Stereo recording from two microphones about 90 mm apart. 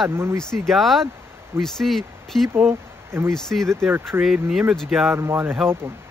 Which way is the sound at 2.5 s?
25° right (ahead or behind).